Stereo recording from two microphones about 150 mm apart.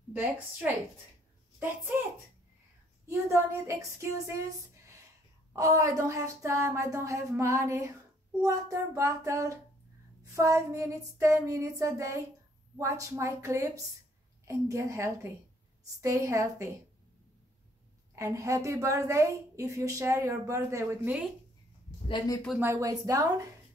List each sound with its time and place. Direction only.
0.1 s a woman's voice: 10° right (ahead or behind)
3.1 s a woman's voice: 20° right (ahead or behind)
18.1 s a woman's voice: 20° right (ahead or behind)
22.6 s a woman's voice: 20° right (ahead or behind)